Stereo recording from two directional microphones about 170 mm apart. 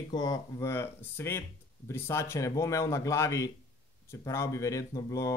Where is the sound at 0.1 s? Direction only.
25° left (ahead or behind).